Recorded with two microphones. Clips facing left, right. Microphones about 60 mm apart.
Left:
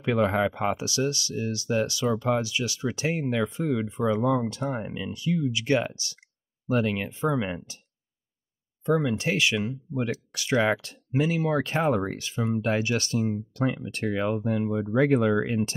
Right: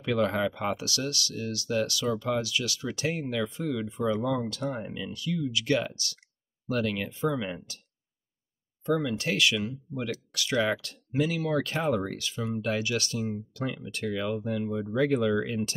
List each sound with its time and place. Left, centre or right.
0.0 s speech: left
8.8 s speech: left